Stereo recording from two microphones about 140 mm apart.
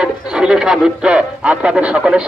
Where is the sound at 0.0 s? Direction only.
5° right (ahead or behind).